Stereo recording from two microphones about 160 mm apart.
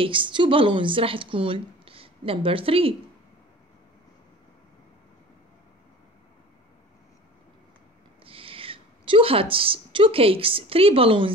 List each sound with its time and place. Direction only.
0.0 s speech: 35° right (ahead or behind)
8.3 s a woman's voice: 35° right (ahead or behind)